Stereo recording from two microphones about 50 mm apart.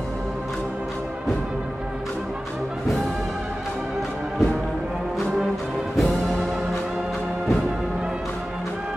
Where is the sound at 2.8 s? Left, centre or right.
Centre.